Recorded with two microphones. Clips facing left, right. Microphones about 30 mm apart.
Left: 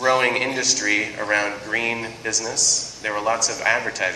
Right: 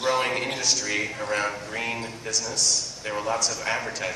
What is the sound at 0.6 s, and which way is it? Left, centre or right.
Speech, left.